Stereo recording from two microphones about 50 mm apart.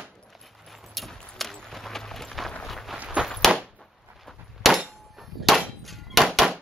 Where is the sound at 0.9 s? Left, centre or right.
Centre.